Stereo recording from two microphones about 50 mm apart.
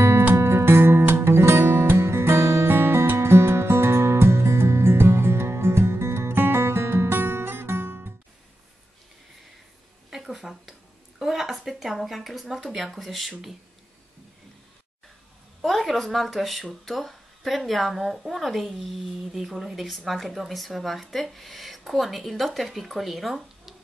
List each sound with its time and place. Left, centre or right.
0.3 s music: right
10.0 s a sound: centre
15.6 s speech: centre